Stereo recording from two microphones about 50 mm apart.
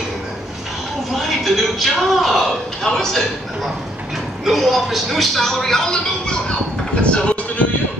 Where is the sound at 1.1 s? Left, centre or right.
Centre; by 7.4 s left.